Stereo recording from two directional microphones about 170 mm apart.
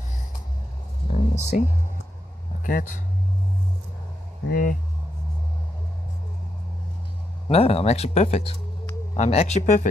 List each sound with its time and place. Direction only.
1.0 s a sound: 40° left (ahead or behind)
2.6 s speech: 50° left (ahead or behind)
4.5 s speech: 60° left (ahead or behind)
7.4 s speech: 35° left (ahead or behind)